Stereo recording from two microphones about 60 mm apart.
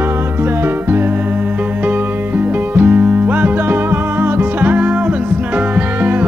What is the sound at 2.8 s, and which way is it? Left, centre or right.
Music, right.